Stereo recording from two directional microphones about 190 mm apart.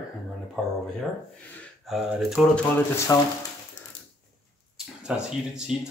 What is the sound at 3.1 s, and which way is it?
Speech, 20° left (ahead or behind).